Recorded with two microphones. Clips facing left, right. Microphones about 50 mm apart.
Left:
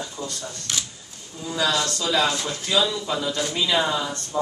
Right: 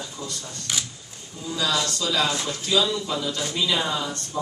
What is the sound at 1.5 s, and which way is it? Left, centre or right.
A man's voice, left.